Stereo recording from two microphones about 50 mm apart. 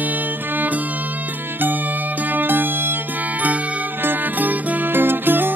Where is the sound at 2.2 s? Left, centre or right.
Right.